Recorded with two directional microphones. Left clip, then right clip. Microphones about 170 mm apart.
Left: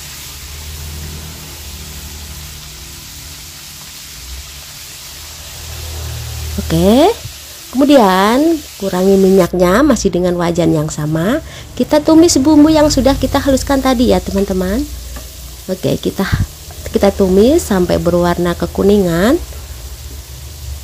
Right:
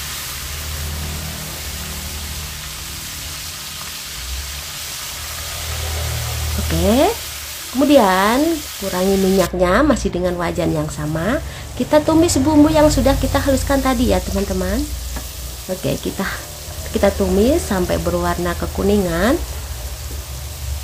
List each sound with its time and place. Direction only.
6.8 s speech: 50° left (ahead or behind)
15.8 s speech: 50° left (ahead or behind)